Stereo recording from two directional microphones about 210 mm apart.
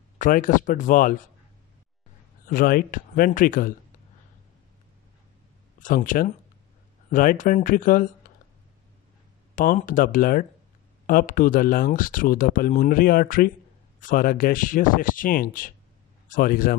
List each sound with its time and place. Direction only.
0.2 s speech: 40° left (ahead or behind)
2.4 s speech: 45° left (ahead or behind)
5.8 s speech: 40° left (ahead or behind)
9.6 s a man's voice: 40° left (ahead or behind)